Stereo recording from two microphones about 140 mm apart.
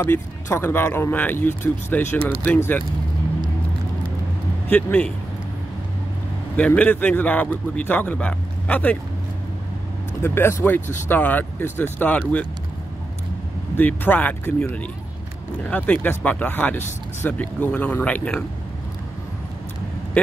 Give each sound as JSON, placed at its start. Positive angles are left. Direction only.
{"t": 0.0, "sound": "speech", "side_deg": 20}
{"t": 4.6, "sound": "speech", "side_deg": 10}
{"t": 6.5, "sound": "speech", "side_deg": 10}
{"t": 10.2, "sound": "speech", "side_deg": 15}
{"t": 13.7, "sound": "speech", "side_deg": 15}